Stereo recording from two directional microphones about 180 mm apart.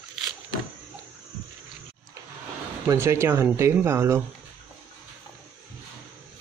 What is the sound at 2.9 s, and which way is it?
Speech, 15° right (ahead or behind).